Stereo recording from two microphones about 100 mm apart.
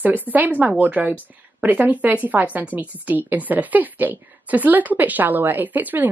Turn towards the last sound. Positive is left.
turn(degrees=-15)  # may be behind; listen again after turning